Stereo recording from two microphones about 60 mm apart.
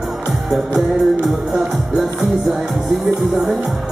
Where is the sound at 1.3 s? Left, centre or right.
Centre.